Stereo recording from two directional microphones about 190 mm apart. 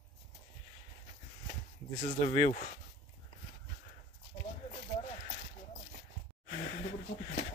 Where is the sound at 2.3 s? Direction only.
25° left (ahead or behind).